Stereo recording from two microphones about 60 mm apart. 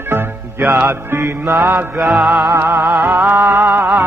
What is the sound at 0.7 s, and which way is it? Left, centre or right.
Music, right.